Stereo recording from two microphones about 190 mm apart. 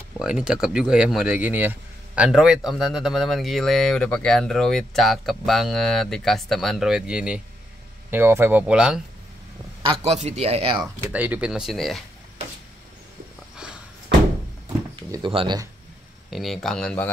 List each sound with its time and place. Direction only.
0.2 s speech: 5° right (ahead or behind)
9.8 s speech: 35° right (ahead or behind)
10.8 s speech: 10° right (ahead or behind)
15.0 s speech: 25° right (ahead or behind)
16.3 s speech: centre (ahead or behind)